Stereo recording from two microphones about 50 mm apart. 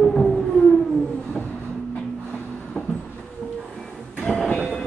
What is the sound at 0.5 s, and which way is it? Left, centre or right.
Civil defense siren, centre.